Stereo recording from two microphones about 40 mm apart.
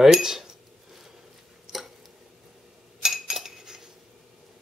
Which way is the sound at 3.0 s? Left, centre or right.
Centre.